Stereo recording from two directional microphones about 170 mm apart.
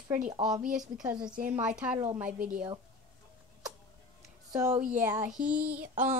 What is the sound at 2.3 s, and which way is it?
Speech, 50° right (ahead or behind).